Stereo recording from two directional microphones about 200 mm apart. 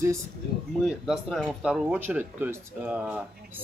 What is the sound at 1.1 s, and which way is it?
Speech, centre (ahead or behind).